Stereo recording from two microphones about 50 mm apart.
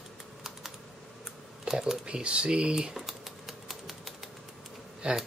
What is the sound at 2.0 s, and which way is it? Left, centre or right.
Speech, right.